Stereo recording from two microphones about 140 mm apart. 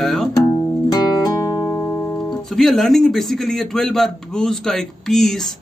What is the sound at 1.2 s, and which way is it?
Music, 25° left (ahead or behind).